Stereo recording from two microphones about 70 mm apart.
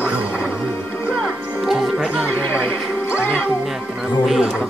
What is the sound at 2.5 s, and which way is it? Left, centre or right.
Music, left.